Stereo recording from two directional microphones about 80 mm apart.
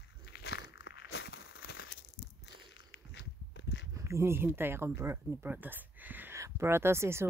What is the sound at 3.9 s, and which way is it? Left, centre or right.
Speech, right.